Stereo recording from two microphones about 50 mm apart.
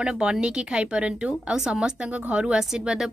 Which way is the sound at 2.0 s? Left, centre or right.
Right.